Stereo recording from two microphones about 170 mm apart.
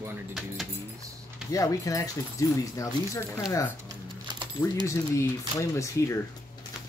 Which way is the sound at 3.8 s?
25° right (ahead or behind).